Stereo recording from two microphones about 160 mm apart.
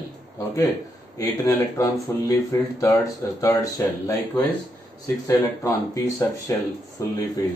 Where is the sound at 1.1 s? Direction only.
20° left (ahead or behind).